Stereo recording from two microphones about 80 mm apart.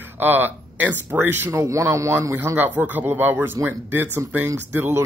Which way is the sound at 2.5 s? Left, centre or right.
Right.